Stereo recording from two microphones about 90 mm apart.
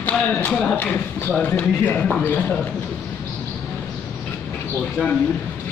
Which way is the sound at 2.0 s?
10° left (ahead or behind).